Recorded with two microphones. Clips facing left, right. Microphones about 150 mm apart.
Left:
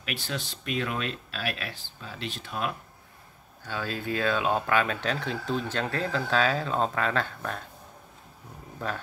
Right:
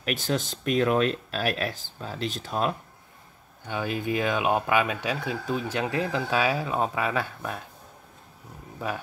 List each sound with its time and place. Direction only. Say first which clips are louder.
0.0 s speech: right 7 dB; 45° right (ahead or behind)
3.6 s speech: right 3 dB; 15° right (ahead or behind)
8.7 s speech: right 2 dB; 10° right (ahead or behind)